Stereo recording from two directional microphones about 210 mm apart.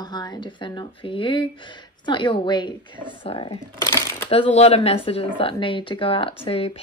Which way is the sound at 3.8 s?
10° left (ahead or behind).